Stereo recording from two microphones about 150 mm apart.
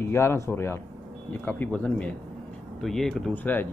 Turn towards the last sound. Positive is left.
turn(degrees=10)  # may be behind; listen again after turning